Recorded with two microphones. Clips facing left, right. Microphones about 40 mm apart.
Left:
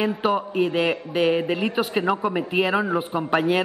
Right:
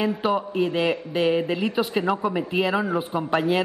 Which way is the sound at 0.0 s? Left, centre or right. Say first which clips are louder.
Left 1 dB; centre.